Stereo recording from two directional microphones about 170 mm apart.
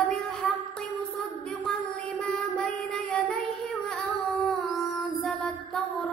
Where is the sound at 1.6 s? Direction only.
5° left (ahead or behind).